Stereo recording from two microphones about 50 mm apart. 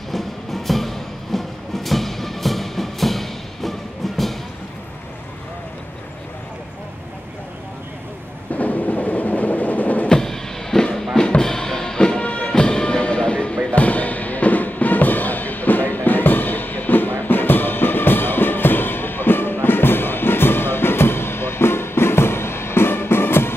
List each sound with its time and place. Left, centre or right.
0.1 s music: centre
8.5 s percussion: left
10.0 s music: centre; by 23.5 s left